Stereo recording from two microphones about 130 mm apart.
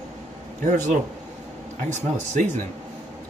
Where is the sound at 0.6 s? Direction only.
75° right (ahead or behind).